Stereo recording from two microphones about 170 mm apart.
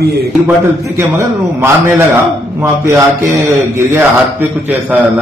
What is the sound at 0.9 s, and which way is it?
A man's voice, 15° right (ahead or behind).